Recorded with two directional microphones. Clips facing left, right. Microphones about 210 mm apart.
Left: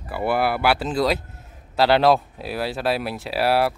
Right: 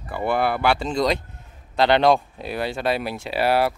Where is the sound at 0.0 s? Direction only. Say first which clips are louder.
Even; 5° left (ahead or behind).